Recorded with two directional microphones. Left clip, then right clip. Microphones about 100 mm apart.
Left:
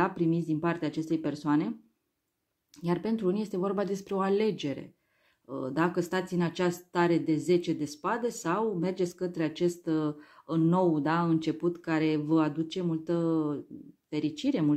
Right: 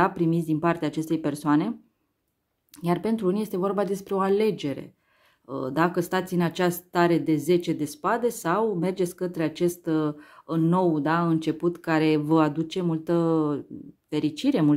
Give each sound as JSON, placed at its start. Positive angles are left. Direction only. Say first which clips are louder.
{"t": 0.0, "sound": "speech", "louder": "right 5 dB", "side_deg": -40}